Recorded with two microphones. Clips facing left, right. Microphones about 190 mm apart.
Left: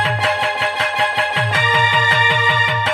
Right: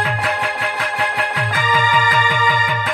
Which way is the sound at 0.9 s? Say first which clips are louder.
Left 2 dB; 25° left (ahead or behind).